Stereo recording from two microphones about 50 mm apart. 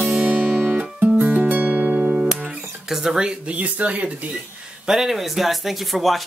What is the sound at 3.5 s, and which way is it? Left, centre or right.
Speech, right.